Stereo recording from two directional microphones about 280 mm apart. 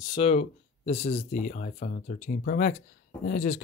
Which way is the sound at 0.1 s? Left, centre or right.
Left.